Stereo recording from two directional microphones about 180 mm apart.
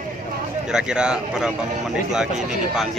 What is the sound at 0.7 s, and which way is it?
Speech, 5° right (ahead or behind).